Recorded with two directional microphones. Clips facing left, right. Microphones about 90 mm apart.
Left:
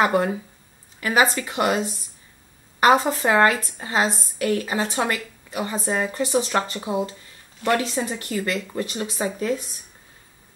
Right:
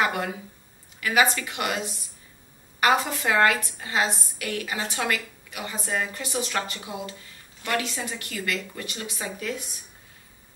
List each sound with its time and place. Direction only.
0.0 s a woman's voice: 35° left (ahead or behind)